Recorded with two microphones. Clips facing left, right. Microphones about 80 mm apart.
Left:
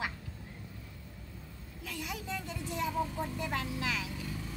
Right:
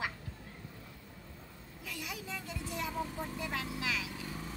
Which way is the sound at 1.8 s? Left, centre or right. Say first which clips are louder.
Left 3 dB; centre.